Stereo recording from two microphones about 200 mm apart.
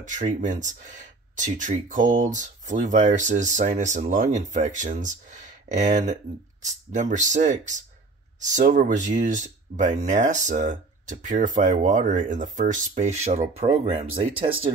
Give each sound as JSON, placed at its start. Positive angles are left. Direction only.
{"t": 0.1, "sound": "speech", "side_deg": -40}